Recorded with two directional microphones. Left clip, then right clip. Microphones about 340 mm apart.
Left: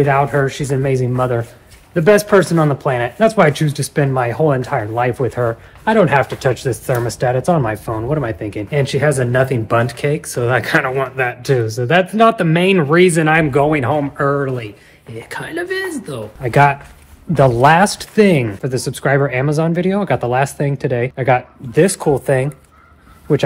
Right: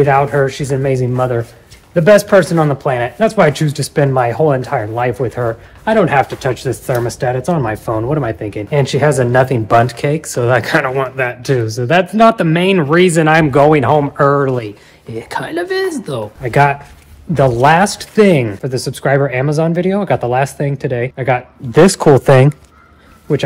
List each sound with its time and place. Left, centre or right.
0.0 s speech: centre
22.2 s speech: right